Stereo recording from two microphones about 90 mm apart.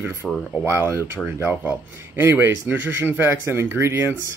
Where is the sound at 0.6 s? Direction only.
30° right (ahead or behind).